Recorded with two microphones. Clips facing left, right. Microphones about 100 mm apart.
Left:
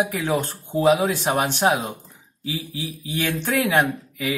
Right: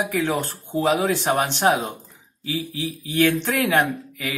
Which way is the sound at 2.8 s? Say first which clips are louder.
Right 9 dB; 10° left (ahead or behind).